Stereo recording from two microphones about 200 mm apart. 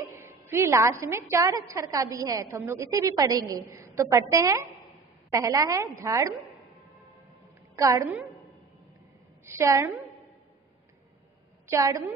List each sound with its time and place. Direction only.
0.0 s a woman's voice: 15° right (ahead or behind)
7.7 s a woman's voice: 15° right (ahead or behind)
9.5 s a woman's voice: 15° right (ahead or behind)
11.7 s a woman's voice: 15° right (ahead or behind)